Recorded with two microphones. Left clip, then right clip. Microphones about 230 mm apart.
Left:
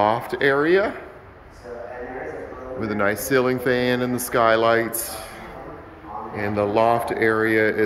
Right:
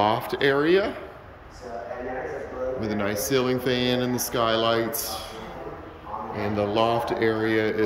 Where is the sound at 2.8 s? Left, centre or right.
Centre.